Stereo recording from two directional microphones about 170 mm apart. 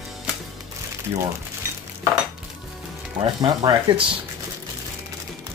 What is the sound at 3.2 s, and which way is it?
Speech, 25° right (ahead or behind).